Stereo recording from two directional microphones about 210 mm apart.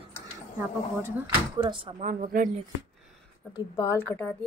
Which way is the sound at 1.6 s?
25° right (ahead or behind).